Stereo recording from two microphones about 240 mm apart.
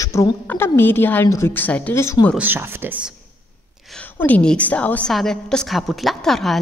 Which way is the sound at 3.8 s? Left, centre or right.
Centre.